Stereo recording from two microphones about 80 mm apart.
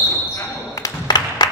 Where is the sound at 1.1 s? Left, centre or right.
Left.